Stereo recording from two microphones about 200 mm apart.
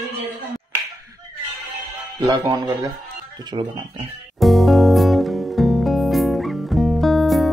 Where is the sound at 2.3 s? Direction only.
20° right (ahead or behind).